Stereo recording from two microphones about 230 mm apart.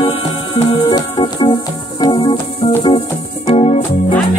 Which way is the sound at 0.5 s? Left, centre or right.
Centre.